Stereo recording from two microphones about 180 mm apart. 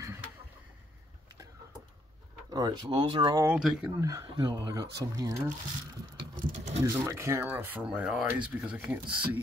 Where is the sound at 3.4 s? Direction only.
5° right (ahead or behind).